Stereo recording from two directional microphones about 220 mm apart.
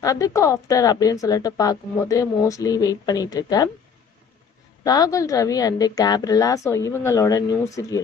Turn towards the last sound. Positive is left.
turn(degrees=15)  # may be behind; listen again after turning